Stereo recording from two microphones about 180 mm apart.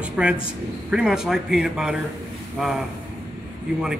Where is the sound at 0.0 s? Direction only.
5° right (ahead or behind).